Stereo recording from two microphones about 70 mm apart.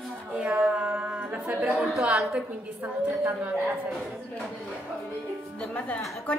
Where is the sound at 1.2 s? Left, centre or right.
Right.